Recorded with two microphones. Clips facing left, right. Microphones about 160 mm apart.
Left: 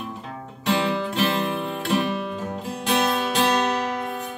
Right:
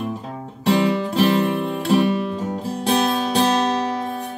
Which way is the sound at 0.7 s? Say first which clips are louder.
Right 5 dB; 40° right (ahead or behind).